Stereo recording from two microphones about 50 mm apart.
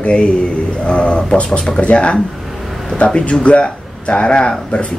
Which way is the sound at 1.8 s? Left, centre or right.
Left.